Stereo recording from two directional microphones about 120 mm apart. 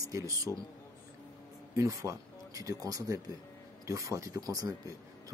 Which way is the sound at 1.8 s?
25° right (ahead or behind).